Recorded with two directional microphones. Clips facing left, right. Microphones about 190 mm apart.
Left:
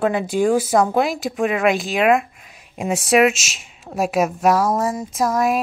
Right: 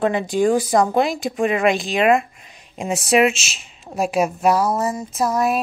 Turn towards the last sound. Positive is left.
turn(degrees=10)  # may be behind; listen again after turning